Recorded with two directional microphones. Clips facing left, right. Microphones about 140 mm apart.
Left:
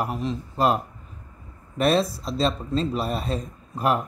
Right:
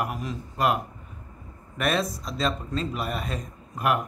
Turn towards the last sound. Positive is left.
turn(degrees=30)  # may be behind; listen again after turning